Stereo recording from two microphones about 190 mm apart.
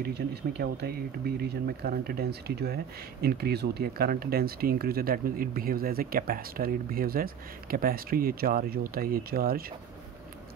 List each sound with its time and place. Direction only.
0.0 s speech: 60° right (ahead or behind)